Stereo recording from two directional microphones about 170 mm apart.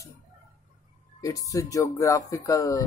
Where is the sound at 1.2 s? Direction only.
20° left (ahead or behind).